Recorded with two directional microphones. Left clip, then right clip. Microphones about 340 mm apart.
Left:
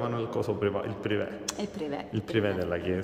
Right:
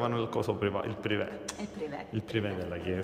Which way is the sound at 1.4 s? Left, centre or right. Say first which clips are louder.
Left 4 dB; left.